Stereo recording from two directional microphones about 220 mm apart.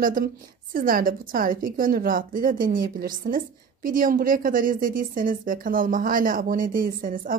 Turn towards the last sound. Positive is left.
turn(degrees=-40)  # may be behind; listen again after turning